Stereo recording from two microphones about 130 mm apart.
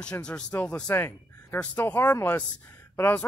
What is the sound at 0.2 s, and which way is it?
Speech, 10° left (ahead or behind).